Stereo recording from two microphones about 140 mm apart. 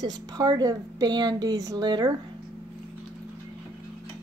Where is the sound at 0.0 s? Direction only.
30° right (ahead or behind).